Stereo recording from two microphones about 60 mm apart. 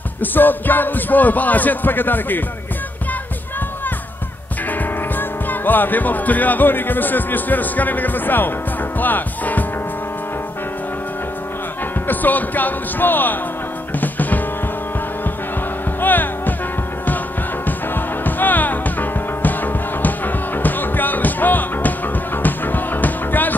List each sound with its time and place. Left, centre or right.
0.2 s speech: left
5.5 s speech: left
9.0 s music: left
12.1 s speech: left
13.9 s music: left
16.0 s music: left
17.6 s music: left